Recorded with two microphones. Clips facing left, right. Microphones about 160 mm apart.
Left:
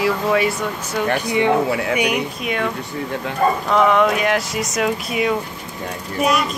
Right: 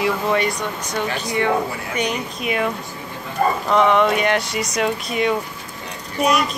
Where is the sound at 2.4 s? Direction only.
5° right (ahead or behind).